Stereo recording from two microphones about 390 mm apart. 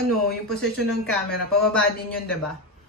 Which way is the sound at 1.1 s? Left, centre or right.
Centre.